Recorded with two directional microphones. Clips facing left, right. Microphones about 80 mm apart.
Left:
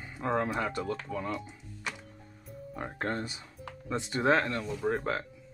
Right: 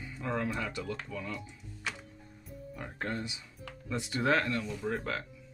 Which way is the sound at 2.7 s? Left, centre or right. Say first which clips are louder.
Left 4 dB; left.